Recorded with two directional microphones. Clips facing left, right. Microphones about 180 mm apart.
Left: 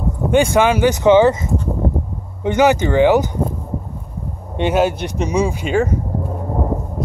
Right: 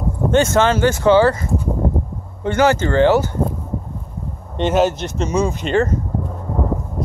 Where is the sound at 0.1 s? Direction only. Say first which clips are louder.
Left 1 dB; 15° left (ahead or behind).